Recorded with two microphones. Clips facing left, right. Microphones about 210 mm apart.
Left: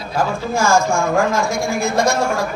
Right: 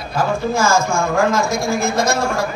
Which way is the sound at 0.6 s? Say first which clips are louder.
Left 3 dB; 20° right (ahead or behind).